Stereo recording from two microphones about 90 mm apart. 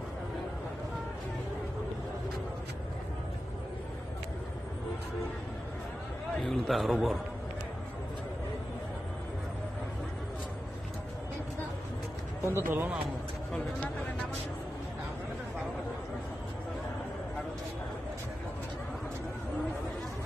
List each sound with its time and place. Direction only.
6.4 s a man's voice: 5° left (ahead or behind)
12.4 s speech: 30° right (ahead or behind)